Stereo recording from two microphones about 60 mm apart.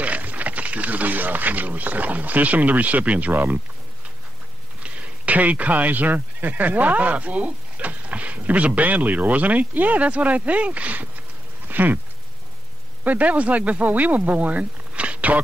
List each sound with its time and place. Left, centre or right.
0.0 s speech: right
4.8 s speech: right
11.6 s a sound: right
13.0 s speech: right